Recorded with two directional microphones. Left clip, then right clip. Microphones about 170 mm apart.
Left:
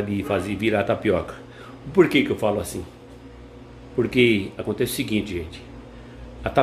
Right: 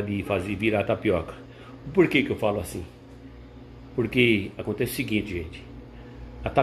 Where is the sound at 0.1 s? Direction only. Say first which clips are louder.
Left 3 dB; 15° left (ahead or behind).